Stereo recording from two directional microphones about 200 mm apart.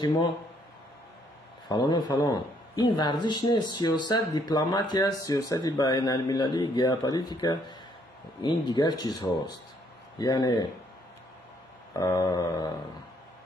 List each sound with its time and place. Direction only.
1.7 s a man's voice: 20° left (ahead or behind)
11.9 s a man's voice: 20° left (ahead or behind)